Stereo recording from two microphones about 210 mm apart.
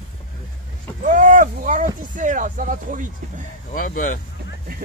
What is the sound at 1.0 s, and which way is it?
Speech, 40° right (ahead or behind).